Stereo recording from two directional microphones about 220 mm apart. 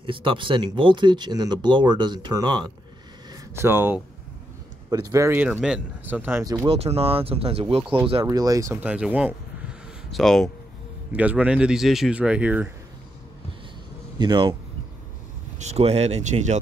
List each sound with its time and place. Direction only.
0.0 s speech: 25° right (ahead or behind)
6.8 s speech: 25° right (ahead or behind); by 12.6 s 5° right (ahead or behind)
14.1 s speech: 20° right (ahead or behind)
15.6 s speech: 30° right (ahead or behind)